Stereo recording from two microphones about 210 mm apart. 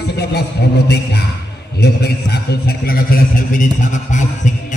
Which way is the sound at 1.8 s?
50° left (ahead or behind).